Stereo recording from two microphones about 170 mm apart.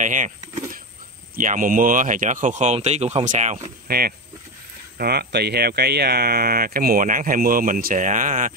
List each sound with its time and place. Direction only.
0.0 s speech: 50° right (ahead or behind)
1.3 s speech: 50° right (ahead or behind)
4.9 s speech: 70° right (ahead or behind); by 8.5 s 50° right (ahead or behind)